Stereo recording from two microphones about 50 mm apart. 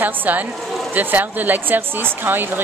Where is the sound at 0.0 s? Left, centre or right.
Right.